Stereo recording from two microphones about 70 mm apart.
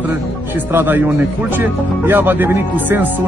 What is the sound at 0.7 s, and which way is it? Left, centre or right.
Speech, right.